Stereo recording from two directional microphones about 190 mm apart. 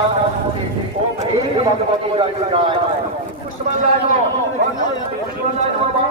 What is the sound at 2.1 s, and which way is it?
Speech, 25° right (ahead or behind).